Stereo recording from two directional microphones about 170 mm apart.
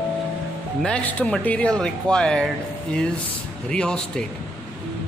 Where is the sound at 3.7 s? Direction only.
5° left (ahead or behind).